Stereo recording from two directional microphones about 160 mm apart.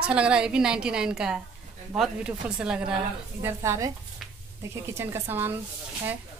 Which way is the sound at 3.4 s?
15° right (ahead or behind).